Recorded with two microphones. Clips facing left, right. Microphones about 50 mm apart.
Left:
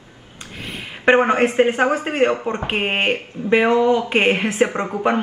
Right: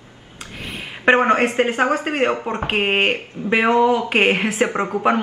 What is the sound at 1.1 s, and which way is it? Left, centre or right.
Speech, centre.